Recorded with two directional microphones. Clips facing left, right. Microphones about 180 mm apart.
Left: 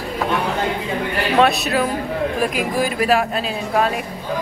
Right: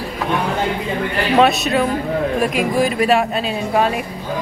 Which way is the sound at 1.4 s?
Centre (ahead or behind).